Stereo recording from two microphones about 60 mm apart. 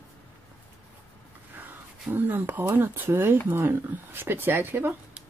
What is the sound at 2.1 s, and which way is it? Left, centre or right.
Speech, right.